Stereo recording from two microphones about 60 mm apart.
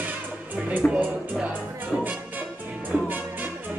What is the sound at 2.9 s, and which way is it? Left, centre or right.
Music, right.